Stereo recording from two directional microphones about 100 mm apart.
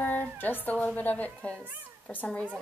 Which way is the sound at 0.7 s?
15° left (ahead or behind).